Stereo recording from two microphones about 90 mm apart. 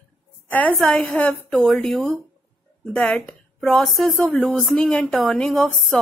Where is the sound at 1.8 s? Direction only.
5° left (ahead or behind).